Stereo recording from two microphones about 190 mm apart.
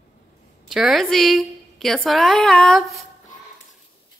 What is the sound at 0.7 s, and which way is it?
A woman's voice, centre (ahead or behind).